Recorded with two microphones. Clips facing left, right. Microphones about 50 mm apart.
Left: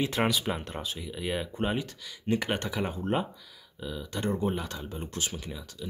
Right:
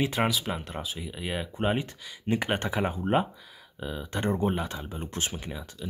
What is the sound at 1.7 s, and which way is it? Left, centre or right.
Speech, right.